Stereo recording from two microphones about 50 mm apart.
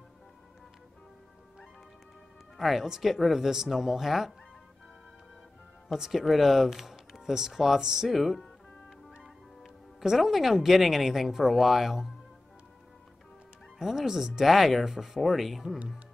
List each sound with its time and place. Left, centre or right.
2.5 s speech: centre
5.9 s speech: centre
9.9 s speech: centre
13.7 s speech: centre